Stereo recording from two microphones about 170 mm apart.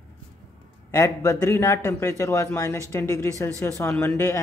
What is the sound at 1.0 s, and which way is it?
A man's voice, 20° left (ahead or behind).